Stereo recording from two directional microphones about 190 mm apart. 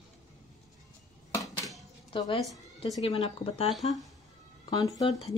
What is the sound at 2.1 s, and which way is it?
Speech, 25° left (ahead or behind).